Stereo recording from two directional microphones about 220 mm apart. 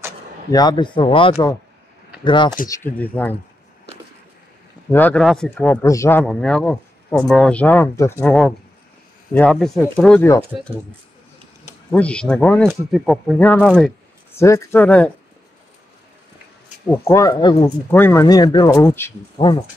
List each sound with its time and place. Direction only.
0.5 s speech: 20° left (ahead or behind)
2.7 s speech: 10° left (ahead or behind)
4.9 s speech: 5° left (ahead or behind)
11.9 s speech: 5° left (ahead or behind)
17.1 s speech: 15° left (ahead or behind)